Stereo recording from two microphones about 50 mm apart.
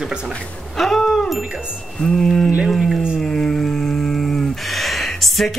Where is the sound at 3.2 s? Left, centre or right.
Centre.